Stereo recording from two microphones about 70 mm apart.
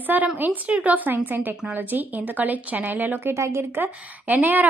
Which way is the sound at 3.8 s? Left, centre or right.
Right.